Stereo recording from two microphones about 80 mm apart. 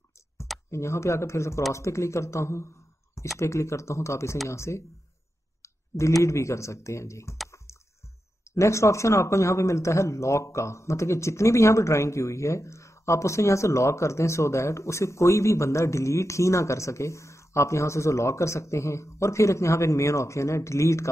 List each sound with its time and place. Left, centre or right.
0.7 s speech: left
5.6 s clicking: left
6.2 s speech: left
8.5 s speech: left